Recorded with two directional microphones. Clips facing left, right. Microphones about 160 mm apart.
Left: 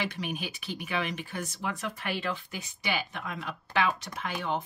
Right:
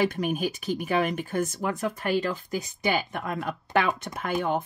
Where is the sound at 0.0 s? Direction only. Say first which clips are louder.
Right 9 dB; 45° right (ahead or behind).